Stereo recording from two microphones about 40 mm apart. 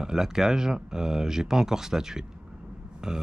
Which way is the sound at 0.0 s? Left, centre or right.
Centre.